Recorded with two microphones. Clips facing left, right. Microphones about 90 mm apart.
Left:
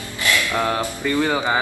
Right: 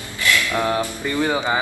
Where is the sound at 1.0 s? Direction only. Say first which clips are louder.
Left 6 dB; 20° right (ahead or behind).